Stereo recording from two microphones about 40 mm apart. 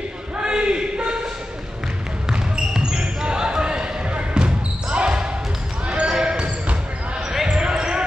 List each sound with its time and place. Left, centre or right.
0.4 s a sound: right
2.2 s basketball bounce: centre
7.5 s basketball bounce: centre